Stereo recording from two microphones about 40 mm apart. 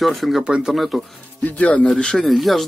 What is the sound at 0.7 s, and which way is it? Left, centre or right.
Speech, centre.